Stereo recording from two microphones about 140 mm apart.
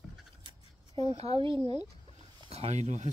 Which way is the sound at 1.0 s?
45° right (ahead or behind).